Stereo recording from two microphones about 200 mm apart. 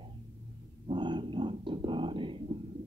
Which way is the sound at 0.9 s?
25° right (ahead or behind).